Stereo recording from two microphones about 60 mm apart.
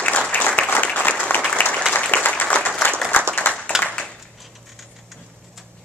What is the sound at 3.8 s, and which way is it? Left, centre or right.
Clapping, centre.